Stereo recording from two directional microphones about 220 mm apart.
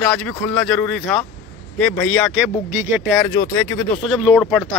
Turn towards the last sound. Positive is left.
turn(degrees=0)  # may be behind; listen again after turning